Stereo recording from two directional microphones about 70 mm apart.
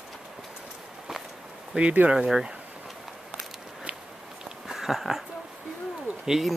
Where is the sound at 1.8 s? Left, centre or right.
Centre.